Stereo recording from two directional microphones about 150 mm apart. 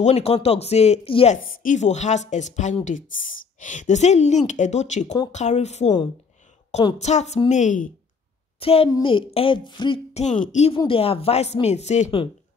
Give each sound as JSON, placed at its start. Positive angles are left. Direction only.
{"t": 0.0, "sound": "a woman's voice", "side_deg": 45}
{"t": 1.3, "sound": "a woman's voice", "side_deg": 60}
{"t": 7.0, "sound": "a woman's voice", "side_deg": 50}
{"t": 8.5, "sound": "speech", "side_deg": 40}
{"t": 10.1, "sound": "a woman's voice", "side_deg": 50}
{"t": 10.9, "sound": "a woman's voice", "side_deg": 40}